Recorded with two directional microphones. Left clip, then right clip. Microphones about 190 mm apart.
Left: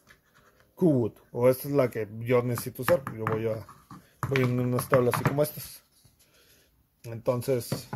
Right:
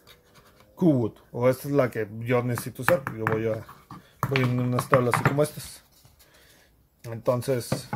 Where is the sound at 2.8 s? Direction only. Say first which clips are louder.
Right 2 dB; 5° right (ahead or behind).